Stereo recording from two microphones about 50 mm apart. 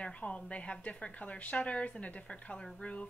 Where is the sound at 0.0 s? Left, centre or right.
Left.